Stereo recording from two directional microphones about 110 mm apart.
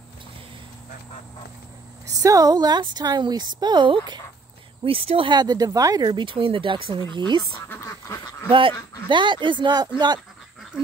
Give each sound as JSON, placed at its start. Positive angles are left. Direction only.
{"t": 2.0, "sound": "a woman's voice", "side_deg": -30}
{"t": 4.8, "sound": "speech", "side_deg": -55}
{"t": 7.7, "sound": "duck", "side_deg": 25}
{"t": 8.5, "sound": "speech", "side_deg": -50}